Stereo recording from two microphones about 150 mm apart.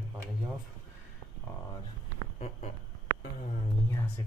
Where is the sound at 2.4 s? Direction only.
45° left (ahead or behind).